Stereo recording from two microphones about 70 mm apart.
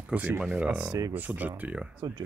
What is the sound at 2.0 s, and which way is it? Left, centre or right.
Speech, right.